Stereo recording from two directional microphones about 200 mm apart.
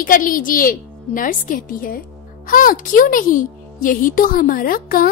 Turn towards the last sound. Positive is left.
turn(degrees=45)  # may be behind; listen again after turning